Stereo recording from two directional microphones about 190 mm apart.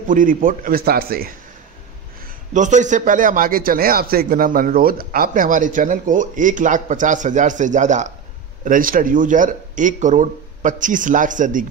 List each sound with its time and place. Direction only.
0.1 s a man's voice: 45° right (ahead or behind)
2.2 s a man's voice: 40° right (ahead or behind)